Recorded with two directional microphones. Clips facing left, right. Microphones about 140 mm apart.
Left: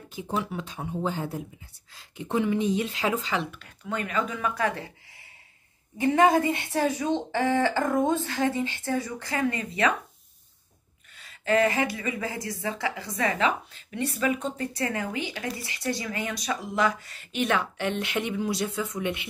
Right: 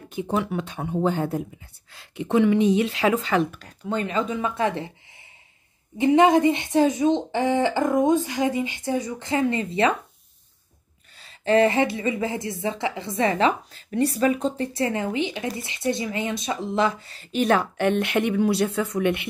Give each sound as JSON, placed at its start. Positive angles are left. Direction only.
{"t": 0.1, "sound": "speech", "side_deg": -60}
{"t": 1.9, "sound": "speech", "side_deg": -70}
{"t": 3.5, "sound": "speech", "side_deg": -35}
{"t": 5.9, "sound": "speech", "side_deg": -20}
{"t": 11.1, "sound": "speech", "side_deg": -30}